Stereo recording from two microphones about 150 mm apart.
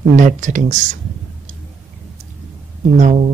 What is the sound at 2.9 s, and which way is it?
Speech, 55° right (ahead or behind).